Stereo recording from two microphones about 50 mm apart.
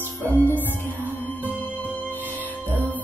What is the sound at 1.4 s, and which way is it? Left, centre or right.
Music, right.